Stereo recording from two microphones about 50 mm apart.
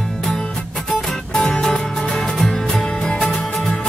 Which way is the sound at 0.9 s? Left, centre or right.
Centre.